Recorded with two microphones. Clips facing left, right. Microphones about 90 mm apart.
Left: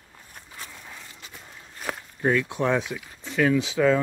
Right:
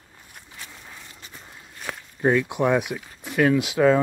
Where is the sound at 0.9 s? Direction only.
10° right (ahead or behind).